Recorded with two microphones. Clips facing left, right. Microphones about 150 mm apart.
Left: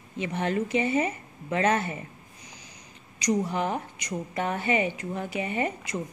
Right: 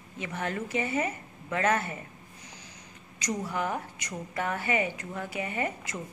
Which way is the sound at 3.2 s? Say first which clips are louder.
Left 5 dB; 20° left (ahead or behind).